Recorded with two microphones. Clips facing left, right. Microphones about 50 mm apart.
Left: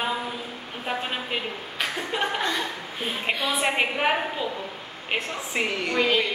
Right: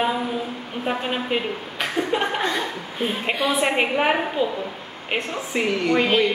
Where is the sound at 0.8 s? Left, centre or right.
Centre.